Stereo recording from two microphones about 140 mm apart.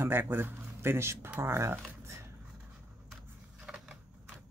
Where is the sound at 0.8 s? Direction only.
20° right (ahead or behind).